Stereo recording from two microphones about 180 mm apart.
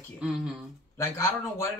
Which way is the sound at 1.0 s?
15° left (ahead or behind).